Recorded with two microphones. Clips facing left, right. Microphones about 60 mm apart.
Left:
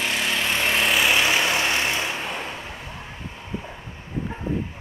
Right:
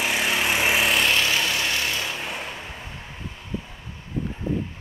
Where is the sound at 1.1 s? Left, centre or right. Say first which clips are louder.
Left 2 dB; left.